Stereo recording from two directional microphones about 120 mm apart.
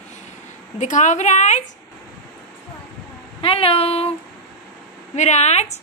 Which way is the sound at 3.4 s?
50° left (ahead or behind).